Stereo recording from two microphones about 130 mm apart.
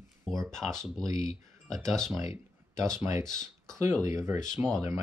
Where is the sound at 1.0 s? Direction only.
25° right (ahead or behind).